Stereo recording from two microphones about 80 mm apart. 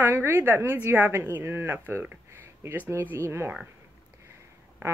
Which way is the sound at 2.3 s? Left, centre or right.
Right.